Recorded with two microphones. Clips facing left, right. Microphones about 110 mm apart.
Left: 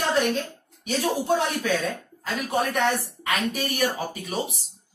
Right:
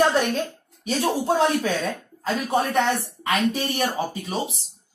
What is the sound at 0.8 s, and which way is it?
Speech, 35° right (ahead or behind).